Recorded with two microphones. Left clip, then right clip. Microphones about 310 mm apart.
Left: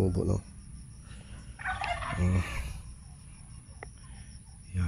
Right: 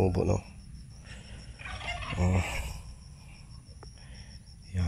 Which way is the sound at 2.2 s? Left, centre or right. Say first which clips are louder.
Right 3 dB; right.